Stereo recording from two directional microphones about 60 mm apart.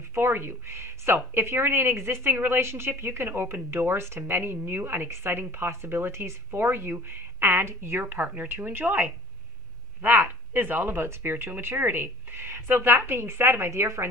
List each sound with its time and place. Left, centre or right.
0.1 s speech: right
8.0 s speech: right